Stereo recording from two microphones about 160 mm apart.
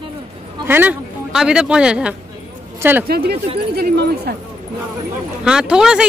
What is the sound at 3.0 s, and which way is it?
Speech, 80° right.